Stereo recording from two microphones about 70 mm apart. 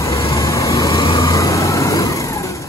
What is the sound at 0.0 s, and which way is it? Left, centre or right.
Vehicle, left.